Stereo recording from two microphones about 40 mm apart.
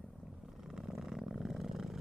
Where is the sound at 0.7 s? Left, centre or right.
Centre.